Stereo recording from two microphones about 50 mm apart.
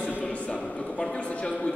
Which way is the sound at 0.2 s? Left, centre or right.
Left.